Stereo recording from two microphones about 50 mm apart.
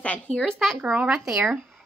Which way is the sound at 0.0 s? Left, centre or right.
Left.